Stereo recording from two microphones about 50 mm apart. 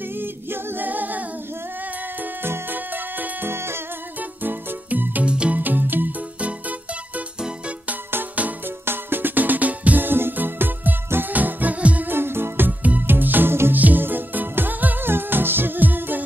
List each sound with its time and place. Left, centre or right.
0.1 s a capella: right
2.4 s music: right
3.5 s music: right
4.2 s music: right
5.2 s music: right
5.6 s music: right
7.3 s music: centre
8.4 s music: right
8.8 s music: right
12.1 s music: right